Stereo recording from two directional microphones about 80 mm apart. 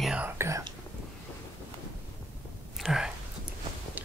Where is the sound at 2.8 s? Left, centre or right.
Centre.